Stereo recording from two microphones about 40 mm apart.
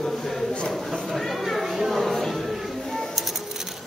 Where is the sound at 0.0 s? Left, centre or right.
Centre.